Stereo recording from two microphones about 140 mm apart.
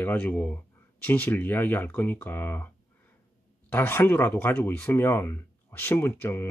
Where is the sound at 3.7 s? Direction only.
15° left (ahead or behind).